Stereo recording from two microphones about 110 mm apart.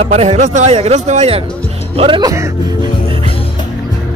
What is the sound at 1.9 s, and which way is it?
Speech, 60° right (ahead or behind).